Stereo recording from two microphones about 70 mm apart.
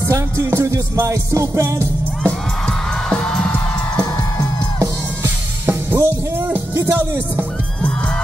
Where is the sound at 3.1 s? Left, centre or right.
Centre.